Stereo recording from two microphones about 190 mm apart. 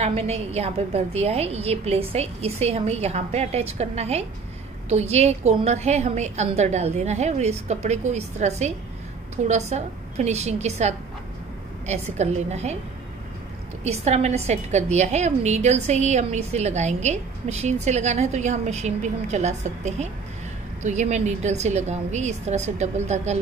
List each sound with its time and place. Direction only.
0.0 s a woman's voice: 35° right (ahead or behind)
13.8 s a woman's voice: 35° right (ahead or behind)